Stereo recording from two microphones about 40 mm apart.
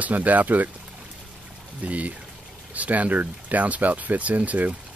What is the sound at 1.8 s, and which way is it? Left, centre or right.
Speech, right.